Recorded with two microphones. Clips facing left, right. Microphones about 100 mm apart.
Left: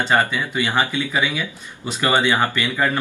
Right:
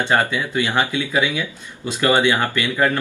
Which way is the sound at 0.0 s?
15° left (ahead or behind).